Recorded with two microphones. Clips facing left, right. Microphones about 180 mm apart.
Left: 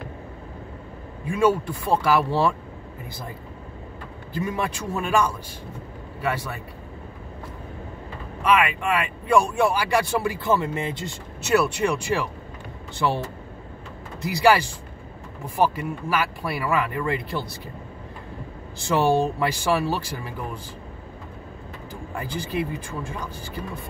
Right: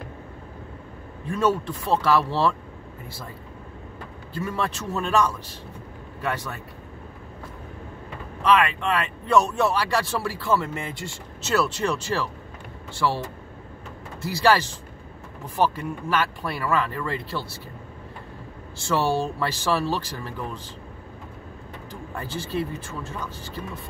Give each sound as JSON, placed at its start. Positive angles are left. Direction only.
{"t": 1.2, "sound": "speech", "side_deg": 10}
{"t": 4.4, "sound": "speech", "side_deg": 15}
{"t": 8.4, "sound": "speech", "side_deg": 10}
{"t": 14.2, "sound": "speech", "side_deg": 15}
{"t": 18.9, "sound": "speech", "side_deg": 15}
{"t": 22.1, "sound": "speech", "side_deg": 15}